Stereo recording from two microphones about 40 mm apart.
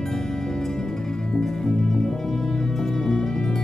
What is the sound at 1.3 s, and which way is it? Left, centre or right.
Music, centre.